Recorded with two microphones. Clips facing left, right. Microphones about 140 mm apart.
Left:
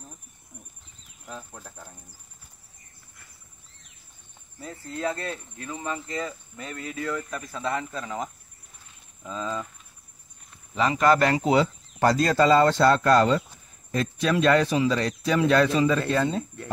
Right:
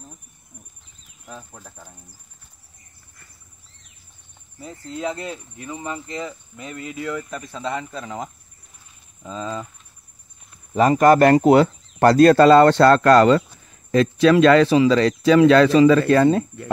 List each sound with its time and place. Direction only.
1.2 s speech: 5° right (ahead or behind)
5.0 s speech: 15° right (ahead or behind)
10.7 s speech: 45° right (ahead or behind); by 16.4 s 75° right (ahead or behind)